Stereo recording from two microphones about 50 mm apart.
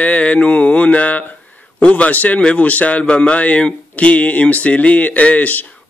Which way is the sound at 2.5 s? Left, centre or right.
Left.